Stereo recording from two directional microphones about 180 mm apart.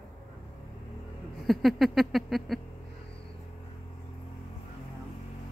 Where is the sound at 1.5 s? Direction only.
Centre (ahead or behind).